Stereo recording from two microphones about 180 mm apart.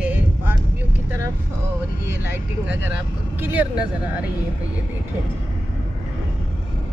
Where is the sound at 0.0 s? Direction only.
10° right (ahead or behind).